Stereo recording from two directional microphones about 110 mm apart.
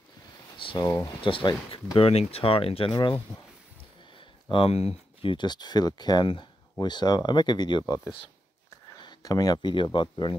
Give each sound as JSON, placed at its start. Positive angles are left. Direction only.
{"t": 0.7, "sound": "speech", "side_deg": 30}
{"t": 1.2, "sound": "speech", "side_deg": 50}
{"t": 2.0, "sound": "speech", "side_deg": 65}
{"t": 4.5, "sound": "speech", "side_deg": 60}
{"t": 8.6, "sound": "a sound", "side_deg": 35}
{"t": 9.9, "sound": "speech", "side_deg": 45}